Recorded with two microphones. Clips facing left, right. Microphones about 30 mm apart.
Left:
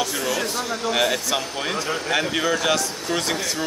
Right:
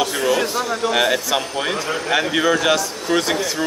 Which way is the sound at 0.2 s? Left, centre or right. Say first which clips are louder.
Right 6 dB; right.